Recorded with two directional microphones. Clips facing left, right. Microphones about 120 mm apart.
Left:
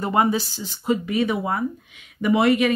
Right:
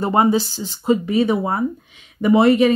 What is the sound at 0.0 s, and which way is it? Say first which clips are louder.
Speech: right 4 dB; 30° right (ahead or behind).